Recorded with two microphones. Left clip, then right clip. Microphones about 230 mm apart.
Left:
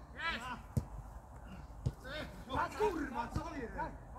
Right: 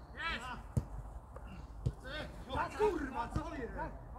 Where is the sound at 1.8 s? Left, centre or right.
Centre.